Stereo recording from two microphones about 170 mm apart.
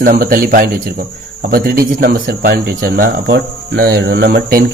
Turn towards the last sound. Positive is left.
turn(degrees=-60)  # may be behind; listen again after turning